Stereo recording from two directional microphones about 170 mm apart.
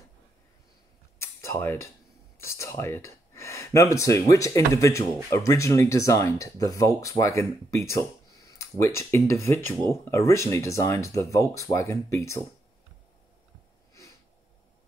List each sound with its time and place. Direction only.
1.2 s cutlery: 15° left (ahead or behind)
2.4 s speech: 15° left (ahead or behind)